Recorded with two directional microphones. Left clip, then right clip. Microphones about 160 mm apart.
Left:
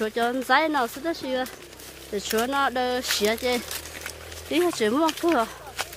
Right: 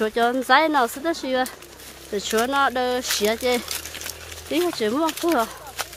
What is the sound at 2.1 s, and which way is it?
Speech, 20° right (ahead or behind).